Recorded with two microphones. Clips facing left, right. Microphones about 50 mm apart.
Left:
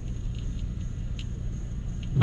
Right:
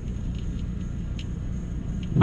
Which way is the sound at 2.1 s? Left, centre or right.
Right.